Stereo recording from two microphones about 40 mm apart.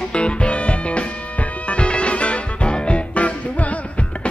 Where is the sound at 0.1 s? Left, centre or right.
Left.